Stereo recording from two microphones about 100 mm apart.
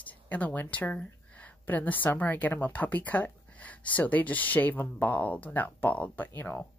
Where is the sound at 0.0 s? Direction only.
15° left (ahead or behind).